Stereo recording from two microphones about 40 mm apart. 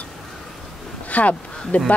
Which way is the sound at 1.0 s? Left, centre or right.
Left.